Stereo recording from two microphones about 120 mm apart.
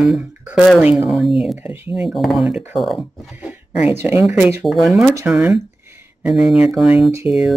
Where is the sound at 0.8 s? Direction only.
10° right (ahead or behind).